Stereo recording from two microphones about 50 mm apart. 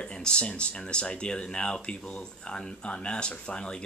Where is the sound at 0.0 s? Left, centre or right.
Centre.